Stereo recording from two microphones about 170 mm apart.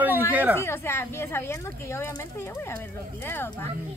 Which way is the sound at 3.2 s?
15° left (ahead or behind).